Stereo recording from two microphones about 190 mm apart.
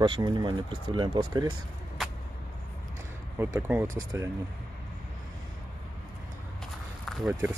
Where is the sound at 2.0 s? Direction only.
Centre (ahead or behind).